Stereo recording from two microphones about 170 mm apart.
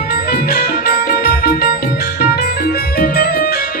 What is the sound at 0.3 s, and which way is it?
Music, 60° left (ahead or behind).